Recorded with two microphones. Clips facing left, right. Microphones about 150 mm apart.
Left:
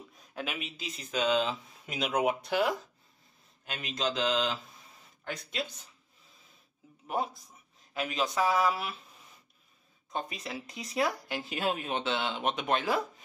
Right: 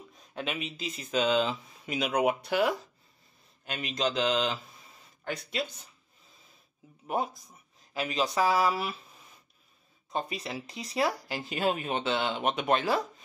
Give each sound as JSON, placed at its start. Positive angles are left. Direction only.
{"t": 0.3, "sound": "speech", "side_deg": 5}
{"t": 7.9, "sound": "speech", "side_deg": 0}
{"t": 10.1, "sound": "speech", "side_deg": 0}
{"t": 10.7, "sound": "speech", "side_deg": -30}
{"t": 11.0, "sound": "speech", "side_deg": 0}